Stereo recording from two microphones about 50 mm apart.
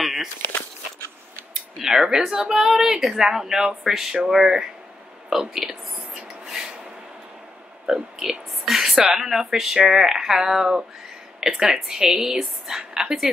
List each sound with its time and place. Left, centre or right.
0.0 s walk: centre
1.5 s speech: centre
5.3 s a sound: centre
7.8 s a woman's voice: centre